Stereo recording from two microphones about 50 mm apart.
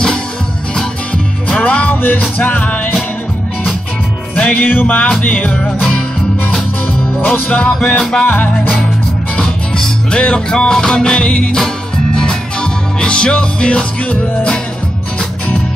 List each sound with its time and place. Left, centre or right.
1.6 s music: left
4.4 s music: left
4.8 s music: left
7.5 s music: left
10.1 s music: centre
13.0 s music: centre